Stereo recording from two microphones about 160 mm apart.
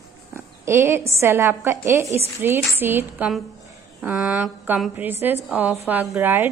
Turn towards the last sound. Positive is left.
turn(degrees=-10)  # may be behind; listen again after turning